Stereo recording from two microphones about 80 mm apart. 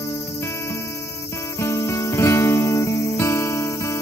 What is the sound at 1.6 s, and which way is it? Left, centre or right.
Music, left.